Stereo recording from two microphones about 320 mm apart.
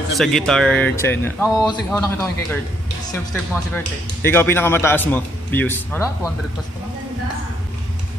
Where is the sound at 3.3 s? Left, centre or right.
Centre.